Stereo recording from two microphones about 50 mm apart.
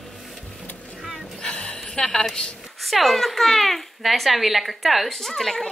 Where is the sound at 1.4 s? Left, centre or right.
Centre.